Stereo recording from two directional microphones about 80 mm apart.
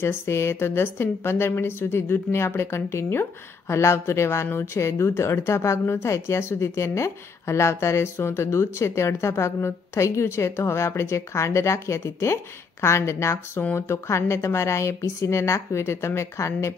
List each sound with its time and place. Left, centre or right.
0.0 s a woman's voice: left